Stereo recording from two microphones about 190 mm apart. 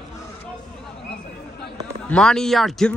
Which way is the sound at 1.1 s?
60° left (ahead or behind).